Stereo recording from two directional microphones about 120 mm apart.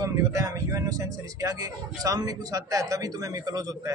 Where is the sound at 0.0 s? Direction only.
25° right (ahead or behind).